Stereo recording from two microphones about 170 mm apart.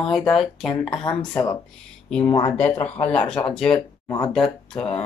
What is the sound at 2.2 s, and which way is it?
Speech, 35° left (ahead or behind).